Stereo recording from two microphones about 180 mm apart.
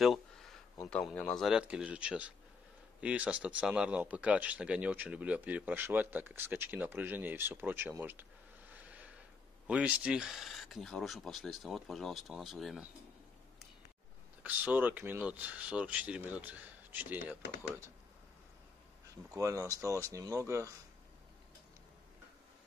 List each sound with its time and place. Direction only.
0.0 s a sound: centre (ahead or behind)
0.8 s speech: 5° left (ahead or behind); by 8.3 s 10° right (ahead or behind)
8.7 s a sound: 10° right (ahead or behind)
9.7 s speech: 5° right (ahead or behind)
14.4 s speech: 10° right (ahead or behind)
19.3 s speech: 15° right (ahead or behind)